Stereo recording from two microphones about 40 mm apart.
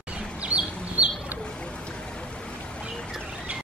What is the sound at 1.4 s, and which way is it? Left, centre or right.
Boat, left.